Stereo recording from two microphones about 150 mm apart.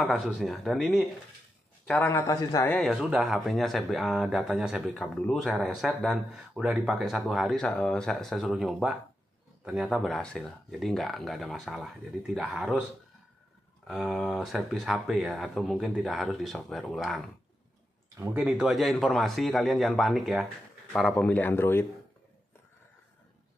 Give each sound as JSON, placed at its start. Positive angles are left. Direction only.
{"t": 0.1, "sound": "speech", "side_deg": 0}
{"t": 2.0, "sound": "speech", "side_deg": 20}
{"t": 2.7, "sound": "speech", "side_deg": 5}
{"t": 3.0, "sound": "speech", "side_deg": -5}
{"t": 13.8, "sound": "speech", "side_deg": 0}
{"t": 18.1, "sound": "speech", "side_deg": -15}
{"t": 21.2, "sound": "speech", "side_deg": 10}